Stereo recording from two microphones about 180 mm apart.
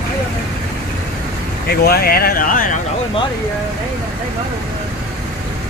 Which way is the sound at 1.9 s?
60° left (ahead or behind).